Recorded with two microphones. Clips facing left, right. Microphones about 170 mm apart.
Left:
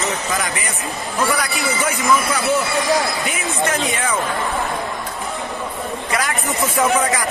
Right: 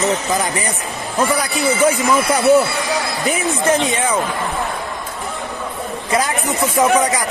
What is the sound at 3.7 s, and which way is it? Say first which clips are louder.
Speech: right 4 dB; 20° right (ahead or behind).